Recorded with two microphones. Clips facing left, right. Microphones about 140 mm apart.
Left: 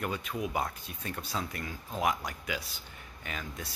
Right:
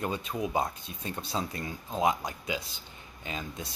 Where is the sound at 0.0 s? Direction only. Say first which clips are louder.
Right 2 dB; 25° right (ahead or behind).